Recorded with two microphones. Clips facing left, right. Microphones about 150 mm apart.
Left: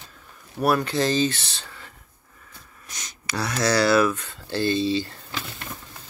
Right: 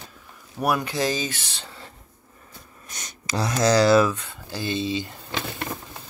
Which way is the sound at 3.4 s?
20° right (ahead or behind).